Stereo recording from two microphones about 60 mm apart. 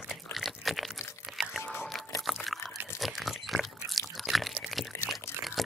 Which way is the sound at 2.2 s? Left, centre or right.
Centre.